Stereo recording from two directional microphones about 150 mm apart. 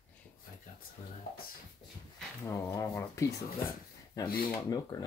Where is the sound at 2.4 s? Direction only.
20° left (ahead or behind).